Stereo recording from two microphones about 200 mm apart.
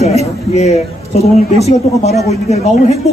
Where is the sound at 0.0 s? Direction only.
35° left (ahead or behind).